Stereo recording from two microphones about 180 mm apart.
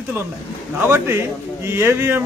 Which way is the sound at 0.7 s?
15° right (ahead or behind).